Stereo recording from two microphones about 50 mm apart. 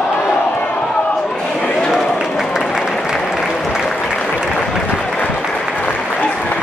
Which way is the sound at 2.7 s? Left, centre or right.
Centre.